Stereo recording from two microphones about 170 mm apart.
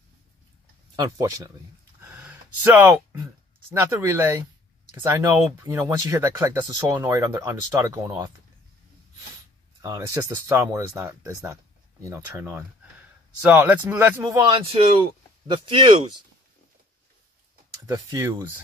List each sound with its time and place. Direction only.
0.9 s speech: 20° right (ahead or behind)
2.0 s a sound: 10° right (ahead or behind)
3.7 s speech: 15° right (ahead or behind)
9.8 s speech: 20° right (ahead or behind)
14.7 s speech: 35° right (ahead or behind)
17.8 s speech: 20° right (ahead or behind)